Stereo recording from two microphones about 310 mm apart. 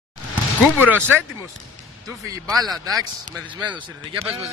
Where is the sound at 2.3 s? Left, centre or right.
Centre.